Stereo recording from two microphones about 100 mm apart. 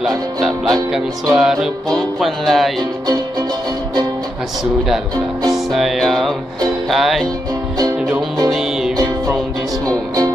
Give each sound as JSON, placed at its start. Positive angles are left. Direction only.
{"t": 0.0, "sound": "music", "side_deg": 0}
{"t": 5.1, "sound": "speech", "side_deg": -40}
{"t": 5.7, "sound": "music", "side_deg": 0}
{"t": 8.5, "sound": "music", "side_deg": -5}
{"t": 9.8, "sound": "music", "side_deg": -35}